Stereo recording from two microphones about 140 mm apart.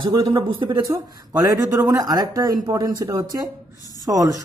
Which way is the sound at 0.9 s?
20° right (ahead or behind).